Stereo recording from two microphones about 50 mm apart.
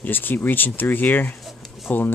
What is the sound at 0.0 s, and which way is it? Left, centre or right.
Speech, left.